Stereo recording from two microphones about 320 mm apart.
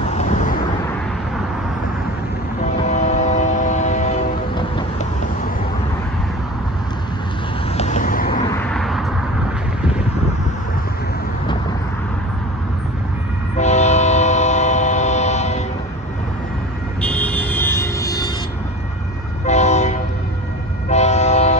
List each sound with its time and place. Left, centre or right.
0.0 s vehicle: left
2.6 s train: left
7.7 s vehicle: left
8.5 s a sound: centre
13.6 s train: left
17.0 s music: centre
19.4 s train: left